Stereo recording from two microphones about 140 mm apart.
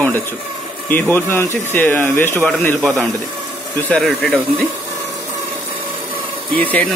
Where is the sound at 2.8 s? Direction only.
Centre (ahead or behind).